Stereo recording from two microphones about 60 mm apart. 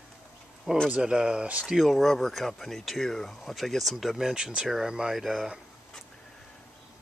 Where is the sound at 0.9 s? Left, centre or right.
Centre.